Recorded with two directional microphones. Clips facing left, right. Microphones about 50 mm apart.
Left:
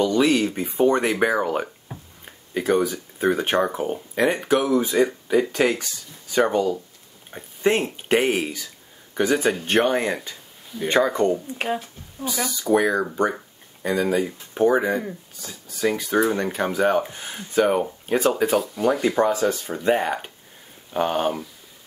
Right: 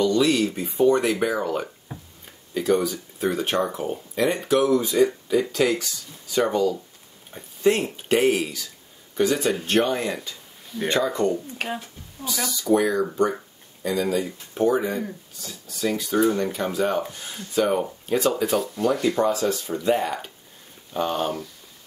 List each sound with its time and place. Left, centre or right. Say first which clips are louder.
0.0 s speech: left 1 dB; left
11.5 s speech: left 4 dB; centre
12.8 s speech: even; left
18.6 s speech: left 1 dB; centre
19.0 s speech: left 2 dB; left